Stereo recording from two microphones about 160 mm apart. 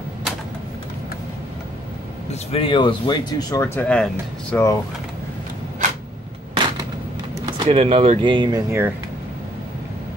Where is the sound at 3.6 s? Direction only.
10° left (ahead or behind).